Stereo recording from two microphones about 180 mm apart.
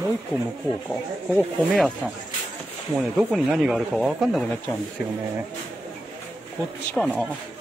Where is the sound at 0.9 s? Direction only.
Centre (ahead or behind).